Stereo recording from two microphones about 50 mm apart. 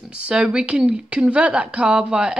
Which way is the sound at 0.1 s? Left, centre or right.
Centre.